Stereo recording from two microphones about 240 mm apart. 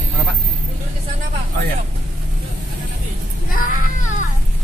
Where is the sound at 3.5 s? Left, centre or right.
Left.